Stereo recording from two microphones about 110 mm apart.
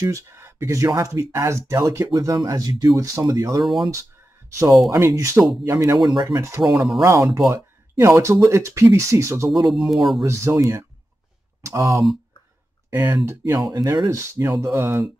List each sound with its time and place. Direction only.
0.0 s speech: 25° right (ahead or behind)
3.6 s speech: centre (ahead or behind)
4.5 s speech: 30° right (ahead or behind)
9.7 s speech: centre (ahead or behind)
10.2 s speech: 25° right (ahead or behind)